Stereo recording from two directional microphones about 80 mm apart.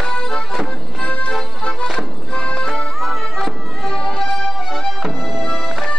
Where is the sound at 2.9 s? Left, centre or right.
Centre.